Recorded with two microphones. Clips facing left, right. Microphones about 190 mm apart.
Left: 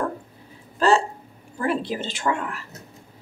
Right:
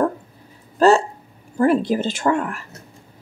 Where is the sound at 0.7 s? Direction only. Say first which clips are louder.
Right 5 dB; 45° right (ahead or behind).